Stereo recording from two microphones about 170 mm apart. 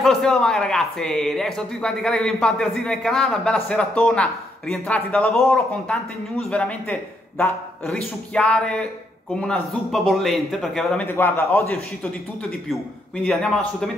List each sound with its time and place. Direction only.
0.0 s a man's voice: 5° left (ahead or behind)